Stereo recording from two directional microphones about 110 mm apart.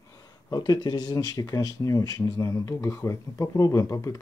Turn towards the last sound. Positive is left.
turn(degrees=30)  # may be behind; listen again after turning